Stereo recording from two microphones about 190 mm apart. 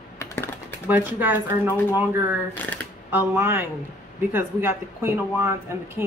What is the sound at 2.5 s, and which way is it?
Speech, 10° left (ahead or behind).